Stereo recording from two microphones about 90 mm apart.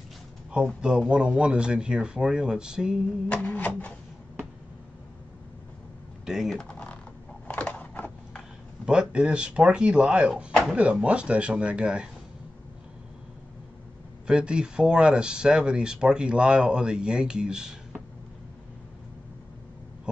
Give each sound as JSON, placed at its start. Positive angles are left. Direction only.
{"t": 0.7, "sound": "speech", "side_deg": -10}
{"t": 3.4, "sound": "printer", "side_deg": 15}
{"t": 6.2, "sound": "speech", "side_deg": -5}
{"t": 6.5, "sound": "typing", "side_deg": 10}
{"t": 7.4, "sound": "a sound", "side_deg": 15}
{"t": 8.8, "sound": "speech", "side_deg": -10}
{"t": 14.2, "sound": "speech", "side_deg": -10}